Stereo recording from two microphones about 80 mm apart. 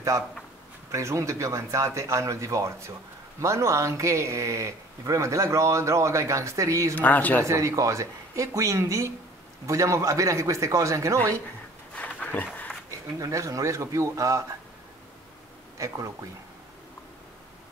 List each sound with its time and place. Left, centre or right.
0.9 s speech: right
7.0 s speech: left
7.4 s speech: right
11.9 s a sound: centre
13.2 s speech: right
15.8 s speech: right